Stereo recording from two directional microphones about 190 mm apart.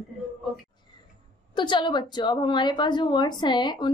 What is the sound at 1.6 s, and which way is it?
A woman's voice, 25° left (ahead or behind).